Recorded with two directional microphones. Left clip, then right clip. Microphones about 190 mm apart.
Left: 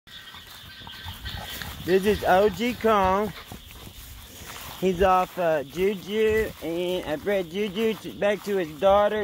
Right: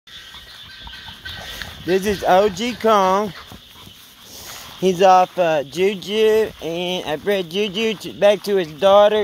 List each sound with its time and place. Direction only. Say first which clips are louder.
1.9 s speech: right 4 dB; 30° right (ahead or behind)
4.8 s speech: right 8 dB; 50° right (ahead or behind)